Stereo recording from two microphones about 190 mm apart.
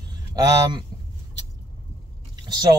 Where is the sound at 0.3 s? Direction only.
20° right (ahead or behind).